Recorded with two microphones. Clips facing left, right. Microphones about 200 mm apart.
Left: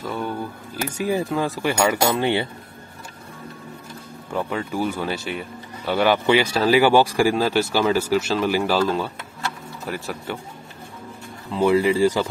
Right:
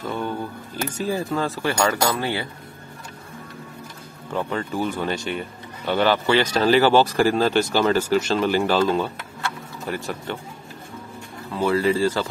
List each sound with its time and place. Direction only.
0.0 s speech: 10° left (ahead or behind)
4.3 s speech: 5° left (ahead or behind)
11.5 s speech: 15° left (ahead or behind)